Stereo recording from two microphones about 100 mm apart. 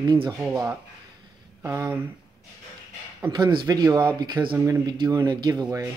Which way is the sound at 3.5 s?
50° right (ahead or behind).